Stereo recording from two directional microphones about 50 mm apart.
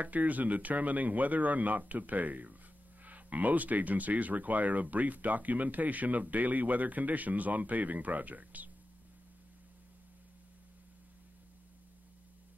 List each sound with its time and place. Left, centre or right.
0.0 s speech: right